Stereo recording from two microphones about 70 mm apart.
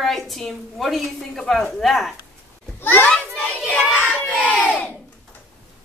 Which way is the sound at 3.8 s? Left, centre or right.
Centre.